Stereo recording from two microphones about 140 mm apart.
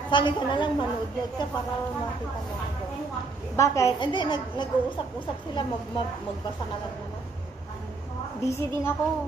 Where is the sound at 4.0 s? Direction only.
35° left (ahead or behind).